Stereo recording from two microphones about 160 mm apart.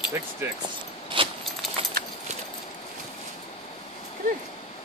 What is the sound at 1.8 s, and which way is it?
Clip-clop, 35° right (ahead or behind).